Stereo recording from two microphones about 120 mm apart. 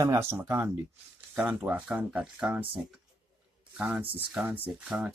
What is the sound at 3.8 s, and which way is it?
Speech, 15° right (ahead or behind).